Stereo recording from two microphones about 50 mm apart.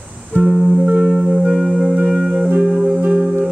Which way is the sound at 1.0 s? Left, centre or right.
Centre.